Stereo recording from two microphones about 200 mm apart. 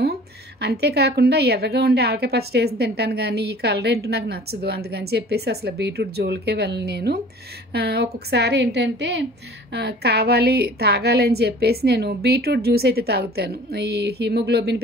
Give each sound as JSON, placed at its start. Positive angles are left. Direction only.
{"t": 0.6, "sound": "a woman's voice", "side_deg": -55}